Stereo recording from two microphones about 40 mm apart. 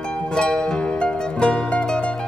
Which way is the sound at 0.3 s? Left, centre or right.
Centre.